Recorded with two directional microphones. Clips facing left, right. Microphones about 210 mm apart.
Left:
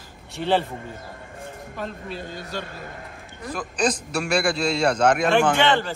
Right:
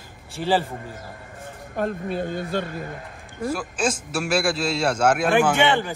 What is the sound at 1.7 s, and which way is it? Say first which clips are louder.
Speech: right 8 dB; 55° right (ahead or behind).